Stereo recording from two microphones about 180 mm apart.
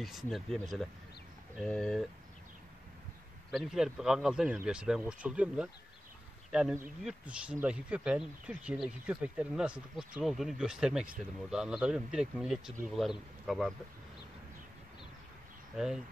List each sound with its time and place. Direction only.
0.3 s speech: centre (ahead or behind)
3.5 s speech: centre (ahead or behind)
15.7 s speech: centre (ahead or behind)